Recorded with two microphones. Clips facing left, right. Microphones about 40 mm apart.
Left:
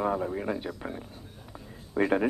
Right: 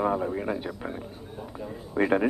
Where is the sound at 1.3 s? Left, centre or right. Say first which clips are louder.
Right 9 dB; centre.